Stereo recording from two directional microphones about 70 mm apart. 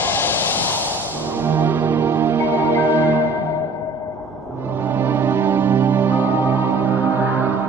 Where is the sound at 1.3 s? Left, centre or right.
Right.